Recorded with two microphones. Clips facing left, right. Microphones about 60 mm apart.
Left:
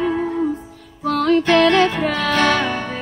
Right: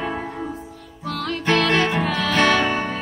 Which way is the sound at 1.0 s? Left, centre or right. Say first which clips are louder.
Left 10 dB; left.